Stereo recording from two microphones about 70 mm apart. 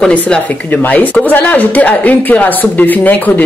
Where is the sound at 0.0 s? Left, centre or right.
Centre.